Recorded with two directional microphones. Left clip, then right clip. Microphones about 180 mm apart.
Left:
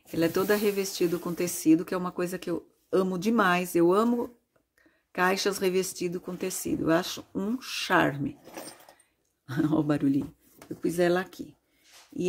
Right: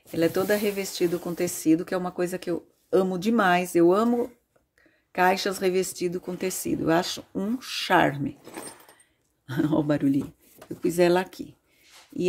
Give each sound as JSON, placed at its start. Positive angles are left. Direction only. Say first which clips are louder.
{"t": 0.1, "sound": "speech", "louder": "right 2 dB", "side_deg": 5}
{"t": 9.5, "sound": "speech", "louder": "right 2 dB", "side_deg": 0}